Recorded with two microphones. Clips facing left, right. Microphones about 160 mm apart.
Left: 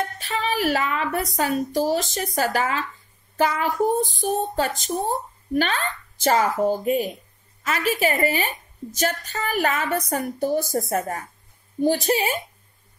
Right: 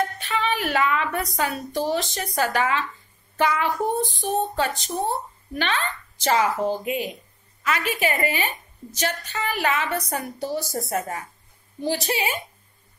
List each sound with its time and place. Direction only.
0.2 s a woman's voice: 40° left (ahead or behind)